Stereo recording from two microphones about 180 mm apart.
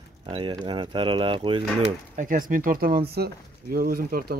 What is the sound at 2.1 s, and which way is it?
Speech, 50° right (ahead or behind).